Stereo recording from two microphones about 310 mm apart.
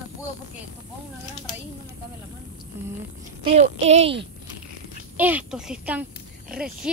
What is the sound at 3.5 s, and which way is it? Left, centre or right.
Speech, right.